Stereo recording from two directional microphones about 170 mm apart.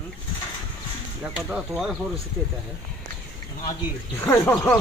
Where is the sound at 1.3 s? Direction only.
5° right (ahead or behind).